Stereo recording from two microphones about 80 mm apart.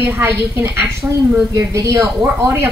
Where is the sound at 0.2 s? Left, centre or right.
Right.